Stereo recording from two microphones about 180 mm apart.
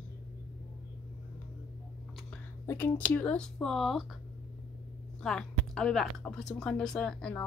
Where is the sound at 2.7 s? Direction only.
10° left (ahead or behind).